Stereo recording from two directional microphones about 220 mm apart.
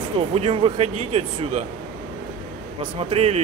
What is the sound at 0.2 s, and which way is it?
Speech, 25° right (ahead or behind).